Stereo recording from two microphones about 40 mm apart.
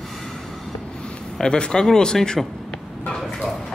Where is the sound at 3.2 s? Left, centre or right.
Centre.